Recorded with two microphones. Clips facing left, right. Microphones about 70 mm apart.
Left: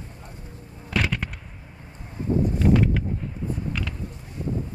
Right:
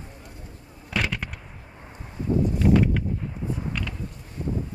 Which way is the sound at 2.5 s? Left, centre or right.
Centre.